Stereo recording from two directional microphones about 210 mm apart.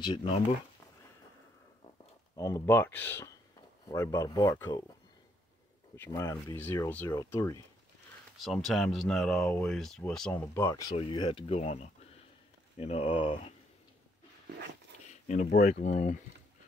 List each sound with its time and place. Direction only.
0.0 s speech: 25° left (ahead or behind)
2.3 s speech: 15° left (ahead or behind)
5.9 s speech: 15° left (ahead or behind)
8.4 s speech: centre (ahead or behind)
11.0 s speech: 25° left (ahead or behind)
15.2 s speech: 35° left (ahead or behind)